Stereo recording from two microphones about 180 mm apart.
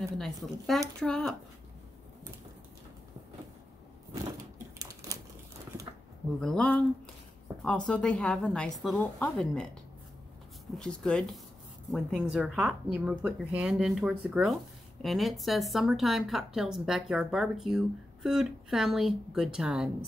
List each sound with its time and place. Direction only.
0.2 s speech: centre (ahead or behind)
4.7 s typing: 20° right (ahead or behind)
6.4 s speech: 5° left (ahead or behind)
10.8 s speech: 5° left (ahead or behind)